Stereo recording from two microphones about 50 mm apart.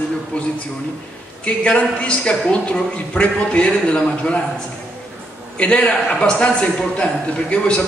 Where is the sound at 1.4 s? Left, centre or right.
Left.